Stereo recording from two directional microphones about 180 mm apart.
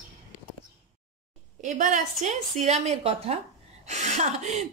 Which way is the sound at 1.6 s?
45° right (ahead or behind).